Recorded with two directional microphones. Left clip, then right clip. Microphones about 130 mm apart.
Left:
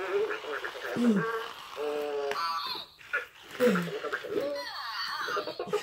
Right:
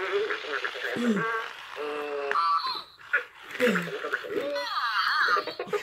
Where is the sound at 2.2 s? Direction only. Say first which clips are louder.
Right 11 dB; 35° right (ahead or behind).